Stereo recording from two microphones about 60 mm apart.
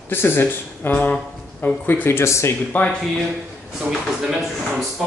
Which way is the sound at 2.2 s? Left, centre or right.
Left.